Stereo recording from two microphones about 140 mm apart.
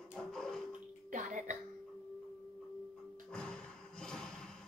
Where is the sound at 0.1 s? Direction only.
5° left (ahead or behind).